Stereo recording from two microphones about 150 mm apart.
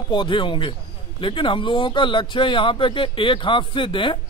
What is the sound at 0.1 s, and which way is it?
A man's voice, 35° left (ahead or behind).